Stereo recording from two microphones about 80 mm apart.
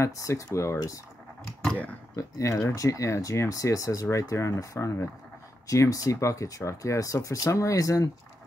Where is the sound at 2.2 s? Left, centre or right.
Left.